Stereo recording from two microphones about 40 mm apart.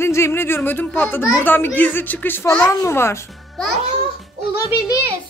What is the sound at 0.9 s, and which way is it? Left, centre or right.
Speech, left.